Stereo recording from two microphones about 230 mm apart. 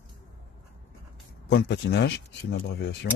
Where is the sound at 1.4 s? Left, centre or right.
Left.